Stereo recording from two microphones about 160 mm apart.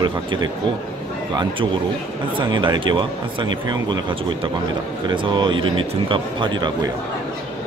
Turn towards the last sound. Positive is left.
turn(degrees=-30)  # may be behind; listen again after turning